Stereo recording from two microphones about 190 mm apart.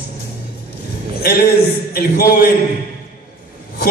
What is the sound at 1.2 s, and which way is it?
A man's voice, 55° left (ahead or behind).